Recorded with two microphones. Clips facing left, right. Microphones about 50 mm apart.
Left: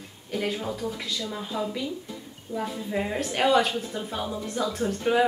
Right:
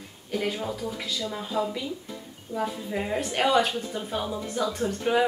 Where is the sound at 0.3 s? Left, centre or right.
Centre.